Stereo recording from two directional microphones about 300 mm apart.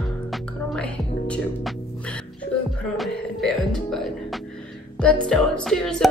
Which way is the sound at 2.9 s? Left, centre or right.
Centre.